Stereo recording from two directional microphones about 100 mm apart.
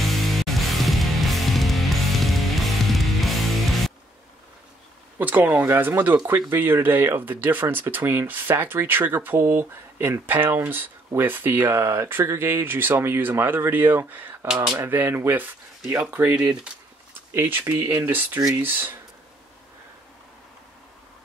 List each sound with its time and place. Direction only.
0.1 s music: centre (ahead or behind)
5.2 s speech: 20° right (ahead or behind)